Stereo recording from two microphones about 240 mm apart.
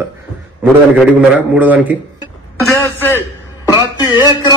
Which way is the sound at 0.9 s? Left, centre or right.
Centre.